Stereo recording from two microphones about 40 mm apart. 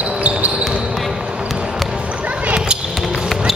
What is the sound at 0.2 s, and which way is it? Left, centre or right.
Basketball bounce, right.